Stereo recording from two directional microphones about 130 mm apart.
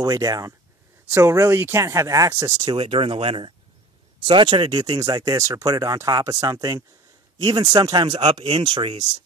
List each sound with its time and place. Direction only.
0.0 s speech: 30° right (ahead or behind)
2.7 s speech: 40° right (ahead or behind)